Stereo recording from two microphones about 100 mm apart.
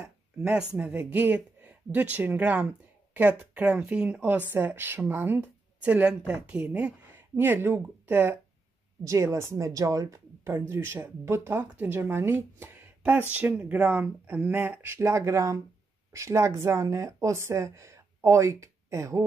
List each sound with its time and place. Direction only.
0.0 s a sound: 5° right (ahead or behind)
0.8 s speech: 15° right (ahead or behind)
9.0 s speech: 30° right (ahead or behind)